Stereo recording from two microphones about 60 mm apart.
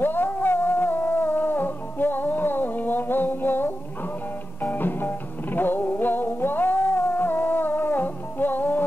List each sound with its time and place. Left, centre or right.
0.0 s music: left